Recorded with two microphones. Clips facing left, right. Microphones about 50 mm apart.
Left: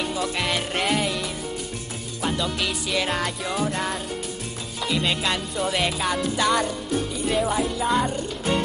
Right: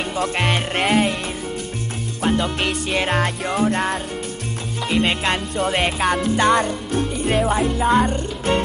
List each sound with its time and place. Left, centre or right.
0.0 s music: right
2.2 s music: right